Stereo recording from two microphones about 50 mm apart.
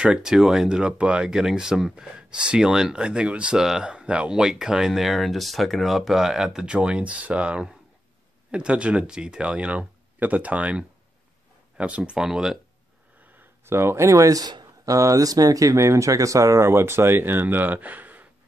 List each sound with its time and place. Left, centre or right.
0.0 s speech: centre
3.5 s speech: centre
4.9 s speech: centre; by 12.2 s right
12.2 s speech: centre
13.7 s speech: right
15.7 s speech: right